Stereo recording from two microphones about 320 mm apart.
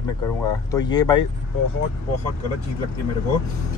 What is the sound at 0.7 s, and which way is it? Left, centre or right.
Speech, centre.